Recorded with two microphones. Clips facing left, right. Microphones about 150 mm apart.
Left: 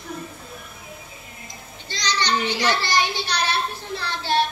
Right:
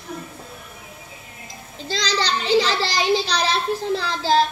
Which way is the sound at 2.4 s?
90° right.